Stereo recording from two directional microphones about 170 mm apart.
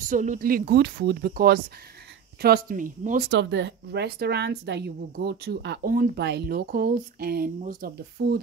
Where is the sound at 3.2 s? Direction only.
90° right; by 7.9 s 50° right (ahead or behind).